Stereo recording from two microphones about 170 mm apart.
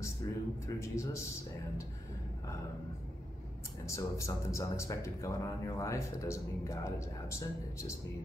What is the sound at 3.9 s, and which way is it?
Speech, 15° left (ahead or behind).